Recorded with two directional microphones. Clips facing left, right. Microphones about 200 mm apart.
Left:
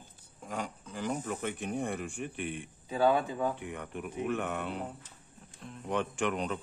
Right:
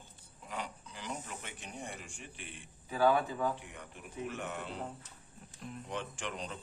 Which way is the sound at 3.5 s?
60° left (ahead or behind).